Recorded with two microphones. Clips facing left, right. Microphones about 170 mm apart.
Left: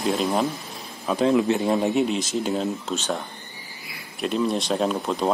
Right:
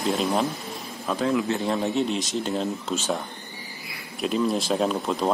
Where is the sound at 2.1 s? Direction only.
Centre (ahead or behind).